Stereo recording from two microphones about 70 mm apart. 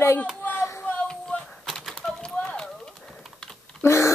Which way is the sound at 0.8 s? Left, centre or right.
Centre.